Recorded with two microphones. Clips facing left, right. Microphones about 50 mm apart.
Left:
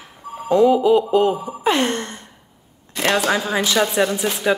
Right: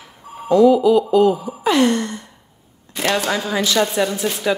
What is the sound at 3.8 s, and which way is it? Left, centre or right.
Speech, centre.